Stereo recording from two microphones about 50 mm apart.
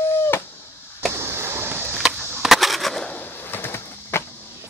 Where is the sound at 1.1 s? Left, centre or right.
Right.